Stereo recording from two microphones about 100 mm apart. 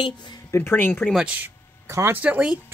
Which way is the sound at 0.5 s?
25° left (ahead or behind).